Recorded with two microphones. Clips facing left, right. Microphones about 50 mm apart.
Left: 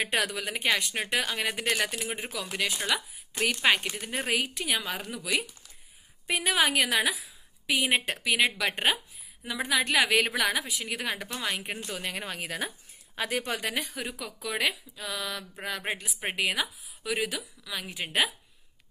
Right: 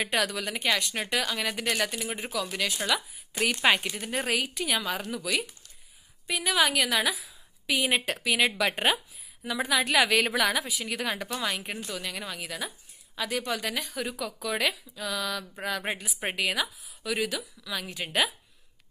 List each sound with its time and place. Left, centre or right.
0.1 s speech: centre
2.0 s speech: centre
2.9 s a woman's voice: centre
6.2 s a woman's voice: left; by 7.2 s centre
7.2 s a woman's voice: centre
11.8 s a woman's voice: left
13.9 s speech: centre
15.5 s a woman's voice: centre
16.3 s speech: centre